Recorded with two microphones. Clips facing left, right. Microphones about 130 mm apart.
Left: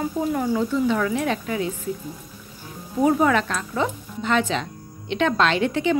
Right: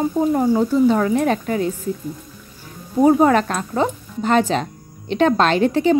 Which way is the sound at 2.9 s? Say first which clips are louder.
Right 5 dB; 35° right (ahead or behind).